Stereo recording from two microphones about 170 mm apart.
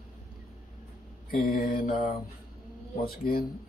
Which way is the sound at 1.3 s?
60° left (ahead or behind).